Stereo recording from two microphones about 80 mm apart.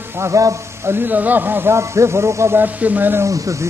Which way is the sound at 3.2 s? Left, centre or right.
Right.